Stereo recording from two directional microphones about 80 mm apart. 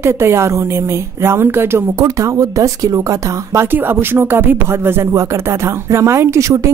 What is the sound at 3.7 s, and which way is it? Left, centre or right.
A woman's voice, right.